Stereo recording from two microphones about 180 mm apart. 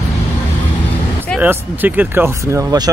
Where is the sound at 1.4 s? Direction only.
10° right (ahead or behind).